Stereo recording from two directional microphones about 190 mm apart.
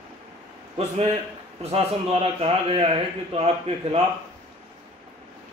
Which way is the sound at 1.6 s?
30° right (ahead or behind).